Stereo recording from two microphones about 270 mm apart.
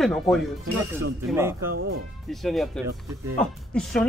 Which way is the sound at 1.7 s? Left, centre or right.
Right.